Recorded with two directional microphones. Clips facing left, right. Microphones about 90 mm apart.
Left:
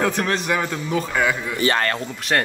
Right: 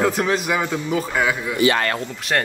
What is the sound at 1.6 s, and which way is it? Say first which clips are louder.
Speech: right 3 dB; 40° left (ahead or behind).